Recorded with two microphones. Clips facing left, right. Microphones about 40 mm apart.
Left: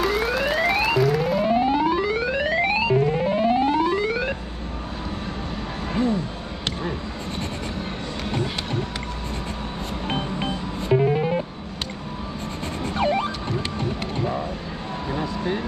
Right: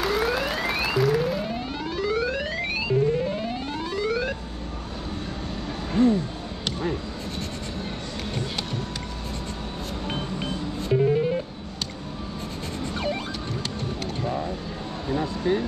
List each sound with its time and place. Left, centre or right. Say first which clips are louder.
0.0 s siren: left 2 dB; centre
1.4 s a sound: left 11 dB; left
10.0 s music: left 4 dB; left
12.8 s vehicle: left 7 dB; centre
13.7 s music: left 4 dB; left
15.0 s a sound: right 2 dB; left